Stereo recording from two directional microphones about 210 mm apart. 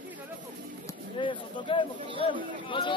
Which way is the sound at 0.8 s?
25° left (ahead or behind).